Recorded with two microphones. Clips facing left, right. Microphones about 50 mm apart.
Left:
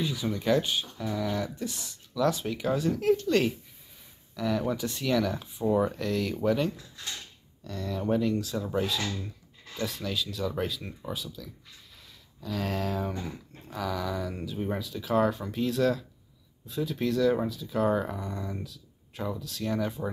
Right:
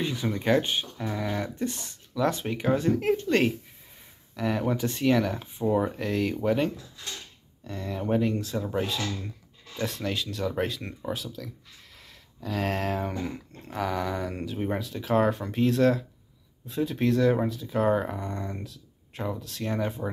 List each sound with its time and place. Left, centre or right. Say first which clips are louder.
0.0 s speech: right 1 dB; right
9.8 s speech: right 2 dB; right
18.2 s speech: right 2 dB; right